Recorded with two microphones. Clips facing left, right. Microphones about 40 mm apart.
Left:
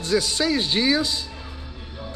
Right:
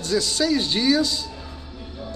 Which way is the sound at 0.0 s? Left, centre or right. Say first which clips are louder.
Even; centre.